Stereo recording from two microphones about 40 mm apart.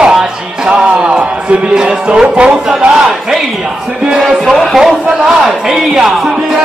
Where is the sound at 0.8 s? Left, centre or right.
Right.